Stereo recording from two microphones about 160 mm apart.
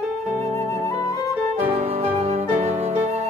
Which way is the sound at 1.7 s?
40° right (ahead or behind).